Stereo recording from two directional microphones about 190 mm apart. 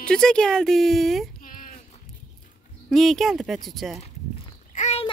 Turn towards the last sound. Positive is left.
turn(degrees=35)  # may be behind; listen again after turning